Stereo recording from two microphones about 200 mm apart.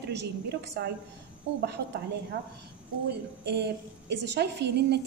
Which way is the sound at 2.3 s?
60° right (ahead or behind).